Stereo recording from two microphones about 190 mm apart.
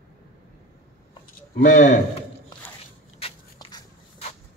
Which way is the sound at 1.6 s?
40° left (ahead or behind).